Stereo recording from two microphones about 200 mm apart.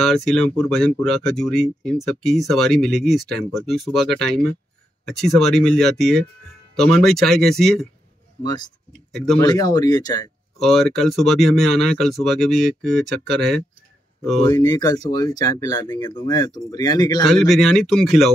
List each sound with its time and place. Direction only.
0.0 s speech: centre (ahead or behind)
8.4 s speech: 20° left (ahead or behind)
9.1 s speech: 5° left (ahead or behind)
9.4 s speech: 20° left (ahead or behind)
10.6 s speech: centre (ahead or behind)
14.4 s speech: 20° left (ahead or behind)
17.3 s speech: centre (ahead or behind)